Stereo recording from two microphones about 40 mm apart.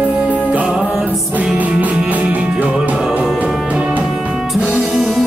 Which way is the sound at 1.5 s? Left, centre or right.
Right.